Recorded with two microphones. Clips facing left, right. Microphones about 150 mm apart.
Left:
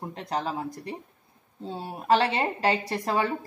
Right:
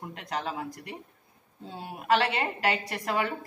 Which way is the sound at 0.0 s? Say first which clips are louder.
Left 3 dB; 35° left (ahead or behind).